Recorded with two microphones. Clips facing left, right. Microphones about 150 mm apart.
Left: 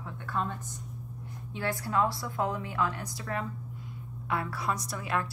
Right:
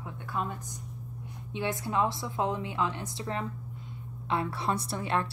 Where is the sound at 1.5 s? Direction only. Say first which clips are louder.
Even; 20° right (ahead or behind).